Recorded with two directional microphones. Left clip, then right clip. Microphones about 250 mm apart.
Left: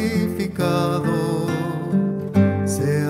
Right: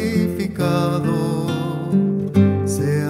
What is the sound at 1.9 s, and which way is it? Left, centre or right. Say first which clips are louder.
Music: right 5 dB; centre.